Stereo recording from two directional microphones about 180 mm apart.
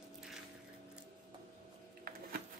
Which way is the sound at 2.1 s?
55° right (ahead or behind).